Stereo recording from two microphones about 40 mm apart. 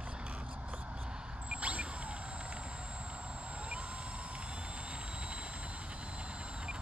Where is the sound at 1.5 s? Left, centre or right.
Right.